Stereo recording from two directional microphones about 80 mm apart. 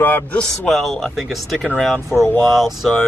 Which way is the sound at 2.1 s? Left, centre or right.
Left.